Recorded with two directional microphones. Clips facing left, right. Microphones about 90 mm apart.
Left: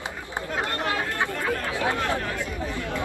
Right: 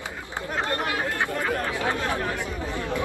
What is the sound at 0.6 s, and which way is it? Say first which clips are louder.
Chatter: right 1 dB; 20° right (ahead or behind).